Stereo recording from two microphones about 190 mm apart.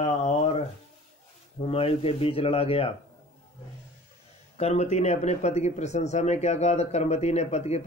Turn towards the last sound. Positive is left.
turn(degrees=35)  # may be behind; listen again after turning